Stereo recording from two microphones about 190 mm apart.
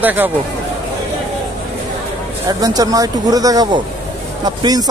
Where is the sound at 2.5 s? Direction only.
20° right (ahead or behind).